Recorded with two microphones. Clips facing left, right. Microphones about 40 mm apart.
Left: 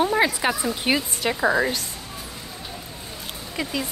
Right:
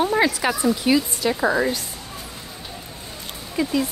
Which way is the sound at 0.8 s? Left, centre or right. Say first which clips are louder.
Right 1 dB; left.